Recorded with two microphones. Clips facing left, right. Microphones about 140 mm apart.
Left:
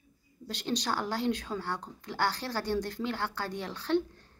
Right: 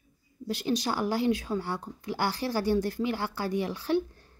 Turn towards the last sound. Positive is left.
turn(degrees=-10)  # may be behind; listen again after turning